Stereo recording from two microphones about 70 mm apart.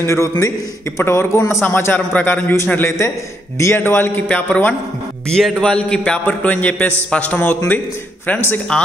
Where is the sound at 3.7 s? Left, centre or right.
Left.